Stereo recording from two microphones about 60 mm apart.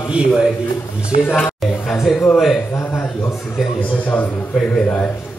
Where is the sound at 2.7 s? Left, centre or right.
Left.